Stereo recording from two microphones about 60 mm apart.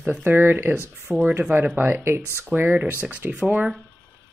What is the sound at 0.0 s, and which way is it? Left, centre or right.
Speech, right.